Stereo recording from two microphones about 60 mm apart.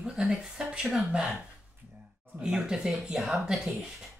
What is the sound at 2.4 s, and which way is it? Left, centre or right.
Speech, centre.